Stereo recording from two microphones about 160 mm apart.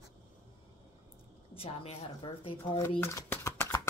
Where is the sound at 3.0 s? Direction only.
15° left (ahead or behind).